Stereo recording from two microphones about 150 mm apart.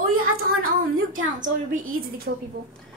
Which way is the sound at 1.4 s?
70° right (ahead or behind).